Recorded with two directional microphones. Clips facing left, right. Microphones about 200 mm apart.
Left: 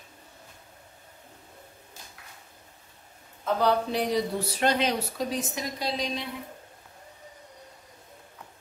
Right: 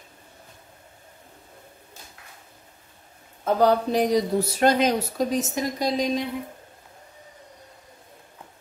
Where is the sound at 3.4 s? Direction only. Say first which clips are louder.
Right 5 dB; 45° right (ahead or behind).